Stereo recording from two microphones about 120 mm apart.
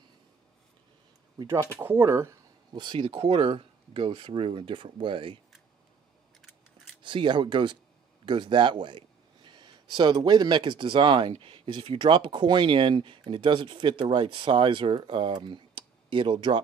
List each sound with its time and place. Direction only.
1.8 s speech: 20° right (ahead or behind)
2.7 s speech: 40° right (ahead or behind)
7.0 s speech: 40° right (ahead or behind)